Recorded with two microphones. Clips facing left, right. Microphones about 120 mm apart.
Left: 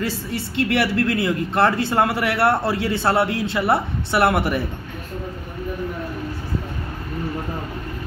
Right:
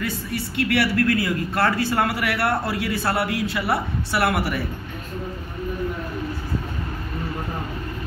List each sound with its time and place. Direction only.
0.0 s speech: 30° left (ahead or behind)